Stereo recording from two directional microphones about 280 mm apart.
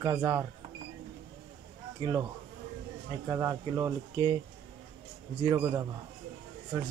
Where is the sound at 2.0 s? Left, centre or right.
Centre.